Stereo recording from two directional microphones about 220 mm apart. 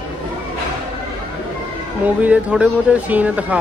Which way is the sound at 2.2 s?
5° right (ahead or behind).